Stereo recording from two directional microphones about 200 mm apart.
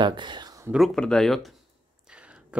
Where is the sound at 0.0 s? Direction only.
20° right (ahead or behind).